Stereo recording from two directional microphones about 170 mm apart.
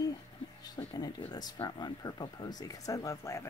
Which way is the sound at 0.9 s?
25° left (ahead or behind).